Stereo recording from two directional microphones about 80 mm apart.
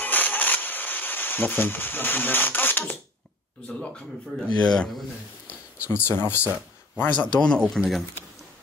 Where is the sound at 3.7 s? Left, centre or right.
Centre.